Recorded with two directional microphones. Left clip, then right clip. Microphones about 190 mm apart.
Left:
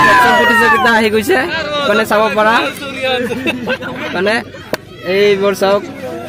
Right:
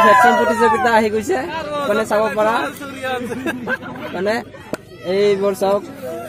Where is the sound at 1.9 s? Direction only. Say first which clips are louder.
Left 5 dB; centre (ahead or behind).